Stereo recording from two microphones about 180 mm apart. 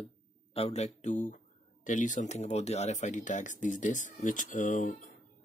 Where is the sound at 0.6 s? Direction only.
35° left (ahead or behind).